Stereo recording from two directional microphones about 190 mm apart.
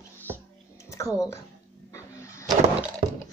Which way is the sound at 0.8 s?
15° left (ahead or behind).